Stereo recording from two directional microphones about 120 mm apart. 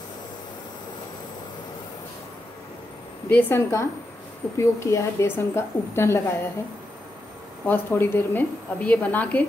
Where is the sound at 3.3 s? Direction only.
20° left (ahead or behind).